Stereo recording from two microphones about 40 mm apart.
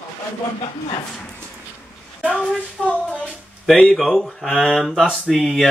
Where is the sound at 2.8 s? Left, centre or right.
Left.